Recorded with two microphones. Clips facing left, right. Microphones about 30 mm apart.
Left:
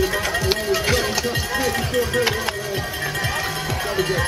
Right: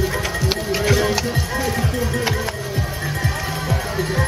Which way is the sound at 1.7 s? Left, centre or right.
Left.